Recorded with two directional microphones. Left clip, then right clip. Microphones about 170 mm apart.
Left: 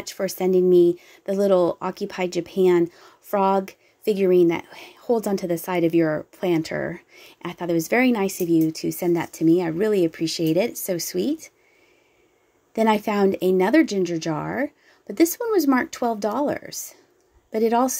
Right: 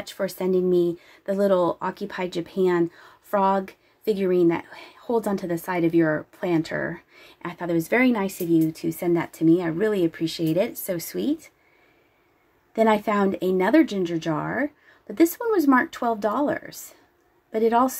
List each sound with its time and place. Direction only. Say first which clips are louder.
0.0 s speech: left 2 dB; 15° left (ahead or behind)
12.7 s a woman's voice: even; 15° left (ahead or behind)